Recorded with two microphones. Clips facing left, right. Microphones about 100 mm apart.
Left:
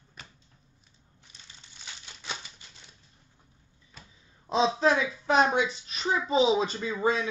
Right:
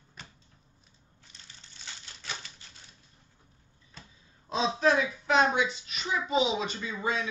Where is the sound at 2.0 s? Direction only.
15° left (ahead or behind).